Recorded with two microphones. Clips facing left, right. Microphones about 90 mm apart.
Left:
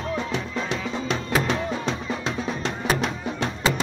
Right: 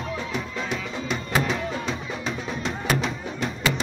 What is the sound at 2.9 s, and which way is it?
Music, 60° left (ahead or behind).